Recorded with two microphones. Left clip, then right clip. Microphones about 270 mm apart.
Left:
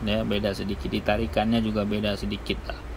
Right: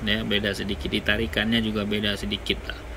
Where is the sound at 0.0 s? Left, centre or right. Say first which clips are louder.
Right 1 dB; centre.